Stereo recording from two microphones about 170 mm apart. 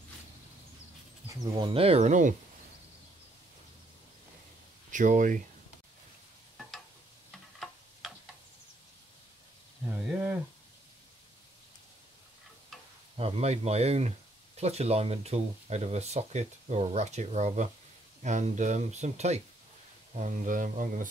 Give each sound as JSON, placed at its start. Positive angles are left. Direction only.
{"t": 1.4, "sound": "speech", "side_deg": -30}
{"t": 4.9, "sound": "speech", "side_deg": -50}
{"t": 7.2, "sound": "tick-tock", "side_deg": 0}
{"t": 10.1, "sound": "a sound", "side_deg": -10}
{"t": 13.2, "sound": "speech", "side_deg": -40}